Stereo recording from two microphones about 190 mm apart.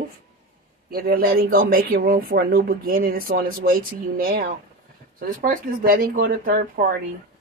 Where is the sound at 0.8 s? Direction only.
50° right (ahead or behind).